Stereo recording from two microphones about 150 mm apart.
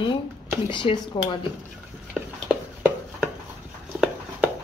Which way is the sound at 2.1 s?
10° right (ahead or behind).